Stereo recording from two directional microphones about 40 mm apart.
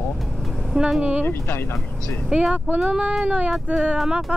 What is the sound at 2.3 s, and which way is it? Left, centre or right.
Speech, right.